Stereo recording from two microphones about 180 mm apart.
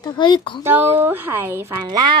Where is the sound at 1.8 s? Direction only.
25° right (ahead or behind).